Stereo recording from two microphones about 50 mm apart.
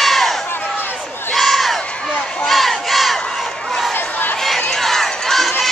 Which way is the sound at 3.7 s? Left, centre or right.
Centre.